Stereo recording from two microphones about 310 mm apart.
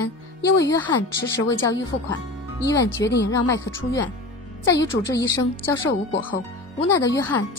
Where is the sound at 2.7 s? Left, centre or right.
Left.